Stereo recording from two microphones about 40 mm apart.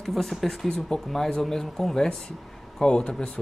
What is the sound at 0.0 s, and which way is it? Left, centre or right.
Speech, centre.